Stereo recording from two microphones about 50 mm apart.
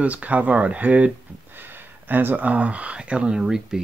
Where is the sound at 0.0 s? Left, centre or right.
Right.